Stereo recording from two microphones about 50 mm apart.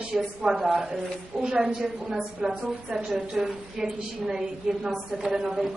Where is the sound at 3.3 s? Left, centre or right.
Centre.